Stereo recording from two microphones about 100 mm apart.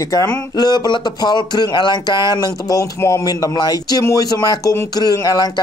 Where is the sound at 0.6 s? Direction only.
45° left (ahead or behind).